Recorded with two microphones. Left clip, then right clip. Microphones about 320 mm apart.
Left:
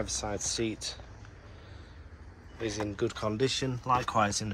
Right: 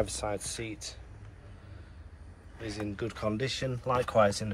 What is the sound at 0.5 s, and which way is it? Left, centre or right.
Speech, centre.